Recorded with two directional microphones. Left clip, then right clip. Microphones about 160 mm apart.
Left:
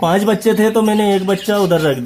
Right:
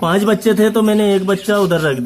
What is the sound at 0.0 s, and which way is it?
Speech, 15° left (ahead or behind).